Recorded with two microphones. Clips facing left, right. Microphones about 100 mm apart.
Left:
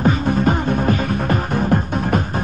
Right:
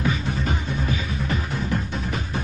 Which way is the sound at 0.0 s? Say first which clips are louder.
Left 9 dB; 50° left (ahead or behind).